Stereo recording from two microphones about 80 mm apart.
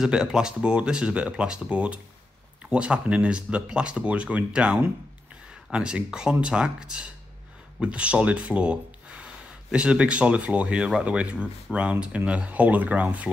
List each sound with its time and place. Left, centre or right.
0.0 s speech: centre